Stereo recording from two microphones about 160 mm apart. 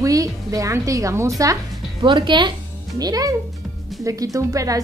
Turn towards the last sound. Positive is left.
turn(degrees=-20)  # may be behind; listen again after turning